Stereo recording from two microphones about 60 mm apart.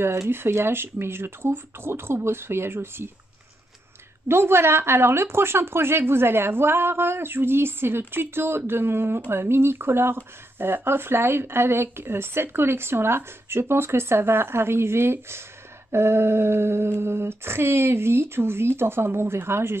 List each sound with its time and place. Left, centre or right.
0.3 s speech: right
4.3 s speech: right